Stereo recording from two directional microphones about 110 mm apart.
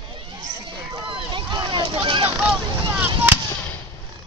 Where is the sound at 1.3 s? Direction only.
45° right (ahead or behind).